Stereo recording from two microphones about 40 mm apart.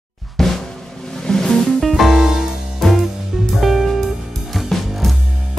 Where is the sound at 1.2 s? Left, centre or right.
Centre.